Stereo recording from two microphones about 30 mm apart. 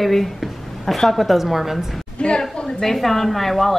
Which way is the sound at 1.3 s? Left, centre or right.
Centre.